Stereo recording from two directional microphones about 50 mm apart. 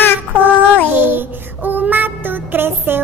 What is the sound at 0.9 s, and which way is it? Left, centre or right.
Child singing, right.